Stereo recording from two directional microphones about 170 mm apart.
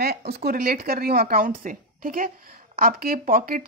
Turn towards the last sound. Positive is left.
turn(degrees=-60)  # may be behind; listen again after turning